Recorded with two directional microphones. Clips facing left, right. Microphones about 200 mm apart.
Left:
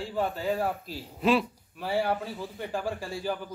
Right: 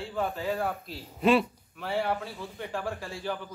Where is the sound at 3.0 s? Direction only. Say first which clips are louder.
Left 3 dB; 35° left (ahead or behind).